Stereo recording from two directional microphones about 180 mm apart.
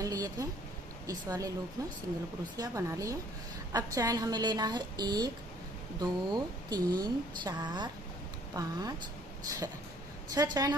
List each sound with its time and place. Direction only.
0.0 s a sound: 20° right (ahead or behind)
1.0 s speech: 20° right (ahead or behind)
10.3 s speech: 20° right (ahead or behind)